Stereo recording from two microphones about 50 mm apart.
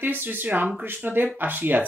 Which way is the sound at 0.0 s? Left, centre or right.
Right.